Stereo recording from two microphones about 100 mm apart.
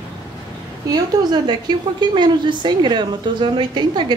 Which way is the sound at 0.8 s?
45° right (ahead or behind).